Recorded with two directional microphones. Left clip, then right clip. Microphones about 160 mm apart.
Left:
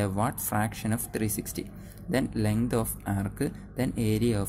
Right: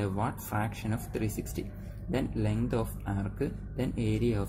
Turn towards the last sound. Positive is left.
turn(degrees=35)  # may be behind; listen again after turning